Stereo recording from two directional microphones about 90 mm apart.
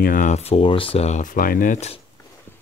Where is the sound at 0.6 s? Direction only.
85° left.